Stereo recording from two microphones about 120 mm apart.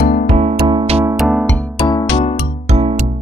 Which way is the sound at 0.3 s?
65° right (ahead or behind).